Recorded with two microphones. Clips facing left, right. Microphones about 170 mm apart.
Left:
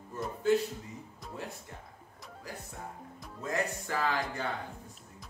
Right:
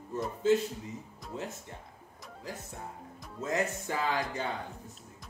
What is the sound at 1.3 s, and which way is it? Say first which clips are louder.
Music: right 3 dB; 25° right (ahead or behind).